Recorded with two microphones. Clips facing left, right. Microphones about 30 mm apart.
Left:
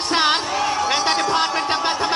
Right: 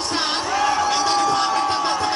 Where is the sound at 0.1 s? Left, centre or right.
Left.